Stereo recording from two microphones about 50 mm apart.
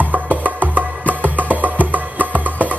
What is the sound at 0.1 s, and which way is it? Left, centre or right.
Music, right.